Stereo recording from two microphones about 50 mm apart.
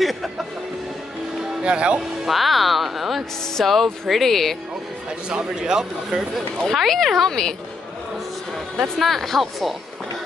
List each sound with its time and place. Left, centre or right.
0.0 s music: centre
1.6 s speech: right
2.0 s speech: centre
5.3 s speech: centre
6.3 s speech: centre
8.9 s speech: centre